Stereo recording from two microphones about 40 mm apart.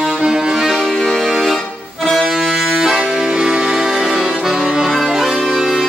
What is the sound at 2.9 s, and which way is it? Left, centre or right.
Accordion, centre.